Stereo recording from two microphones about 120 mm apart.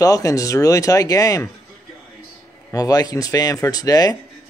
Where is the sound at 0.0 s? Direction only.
30° left (ahead or behind).